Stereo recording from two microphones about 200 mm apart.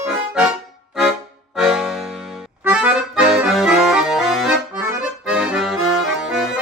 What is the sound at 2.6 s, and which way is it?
Accordion, 5° right (ahead or behind).